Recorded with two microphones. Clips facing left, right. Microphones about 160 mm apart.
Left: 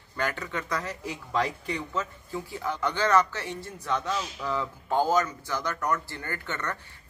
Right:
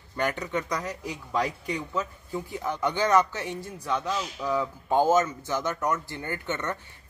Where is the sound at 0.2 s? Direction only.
20° right (ahead or behind).